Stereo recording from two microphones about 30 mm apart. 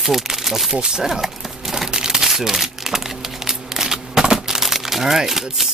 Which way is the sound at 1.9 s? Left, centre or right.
Right.